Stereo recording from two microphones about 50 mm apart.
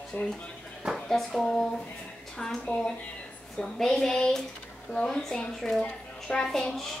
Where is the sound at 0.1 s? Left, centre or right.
Left.